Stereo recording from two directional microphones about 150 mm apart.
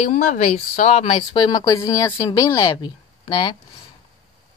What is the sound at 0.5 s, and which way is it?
Speech, 45° left (ahead or behind).